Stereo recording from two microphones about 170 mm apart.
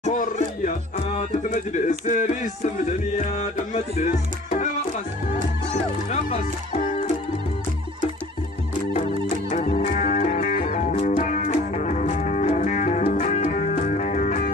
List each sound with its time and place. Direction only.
0.0 s music: 45° left (ahead or behind)
6.0 s music: 40° left (ahead or behind)
8.9 s music: 40° left (ahead or behind)